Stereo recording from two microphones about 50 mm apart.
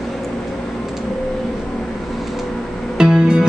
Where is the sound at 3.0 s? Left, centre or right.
Centre.